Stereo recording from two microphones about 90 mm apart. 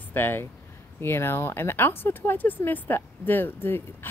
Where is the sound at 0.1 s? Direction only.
25° left (ahead or behind).